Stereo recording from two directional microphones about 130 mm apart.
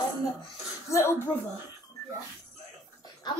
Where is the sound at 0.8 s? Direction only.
20° left (ahead or behind).